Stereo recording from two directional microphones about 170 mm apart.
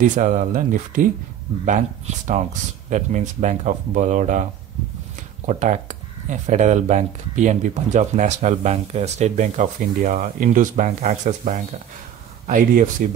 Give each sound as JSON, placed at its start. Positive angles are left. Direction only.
{"t": 0.0, "sound": "speech", "side_deg": -45}
{"t": 5.5, "sound": "speech", "side_deg": -45}